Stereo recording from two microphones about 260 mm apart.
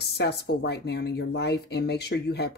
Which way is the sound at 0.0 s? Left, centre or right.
Left.